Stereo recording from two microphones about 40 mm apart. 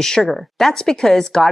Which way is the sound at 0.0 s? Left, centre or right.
Centre.